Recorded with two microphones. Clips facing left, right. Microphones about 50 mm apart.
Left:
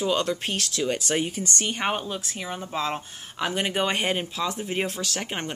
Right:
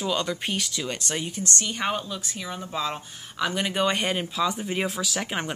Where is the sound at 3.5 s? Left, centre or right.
Centre.